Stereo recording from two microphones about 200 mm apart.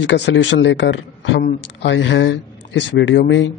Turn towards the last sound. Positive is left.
turn(degrees=65)  # may be behind; listen again after turning